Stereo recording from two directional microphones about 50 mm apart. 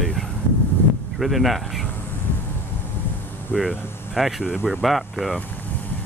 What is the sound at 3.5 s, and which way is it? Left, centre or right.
Speech, centre.